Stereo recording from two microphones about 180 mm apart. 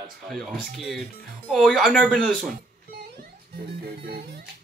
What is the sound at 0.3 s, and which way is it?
Speech, centre (ahead or behind).